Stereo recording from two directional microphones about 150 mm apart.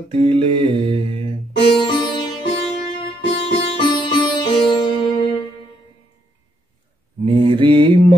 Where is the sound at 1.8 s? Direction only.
30° left (ahead or behind).